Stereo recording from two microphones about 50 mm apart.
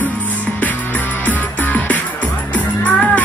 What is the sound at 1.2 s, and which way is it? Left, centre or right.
Music, left.